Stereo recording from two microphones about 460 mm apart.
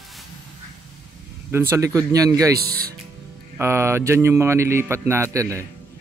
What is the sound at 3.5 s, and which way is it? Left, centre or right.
Speech, centre.